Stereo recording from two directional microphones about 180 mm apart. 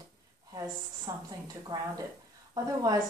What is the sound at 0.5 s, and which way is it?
A woman's voice, 20° right (ahead or behind).